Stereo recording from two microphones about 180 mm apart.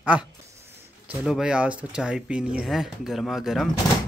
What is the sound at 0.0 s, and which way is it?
Speech, 10° right (ahead or behind).